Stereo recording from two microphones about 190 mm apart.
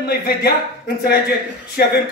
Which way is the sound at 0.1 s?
55° left (ahead or behind).